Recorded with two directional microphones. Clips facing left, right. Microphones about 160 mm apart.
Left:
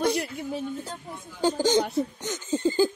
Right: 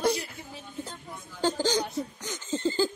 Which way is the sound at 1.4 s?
15° left (ahead or behind).